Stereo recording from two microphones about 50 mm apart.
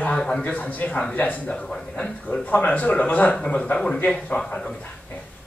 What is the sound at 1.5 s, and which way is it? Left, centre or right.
Speech, centre.